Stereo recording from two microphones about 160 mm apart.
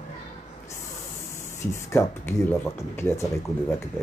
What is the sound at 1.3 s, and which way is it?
Speech, 15° left (ahead or behind).